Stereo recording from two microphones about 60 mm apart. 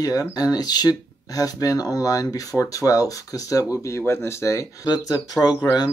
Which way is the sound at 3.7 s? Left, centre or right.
Left.